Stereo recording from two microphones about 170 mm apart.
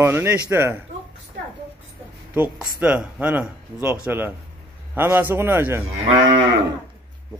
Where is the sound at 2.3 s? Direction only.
10° right (ahead or behind).